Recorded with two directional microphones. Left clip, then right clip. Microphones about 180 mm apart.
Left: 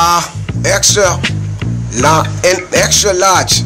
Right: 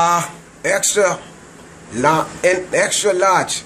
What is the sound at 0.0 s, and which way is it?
A man's voice, 25° left (ahead or behind).